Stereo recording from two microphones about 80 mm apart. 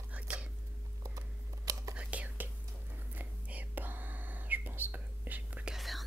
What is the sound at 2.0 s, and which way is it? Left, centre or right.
Whispering, centre.